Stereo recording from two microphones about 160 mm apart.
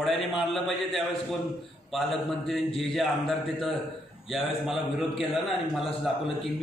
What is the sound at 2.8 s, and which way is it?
A man's voice, centre (ahead or behind).